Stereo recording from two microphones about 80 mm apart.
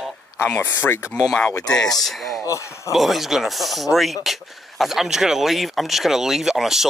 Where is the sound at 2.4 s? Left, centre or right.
Left.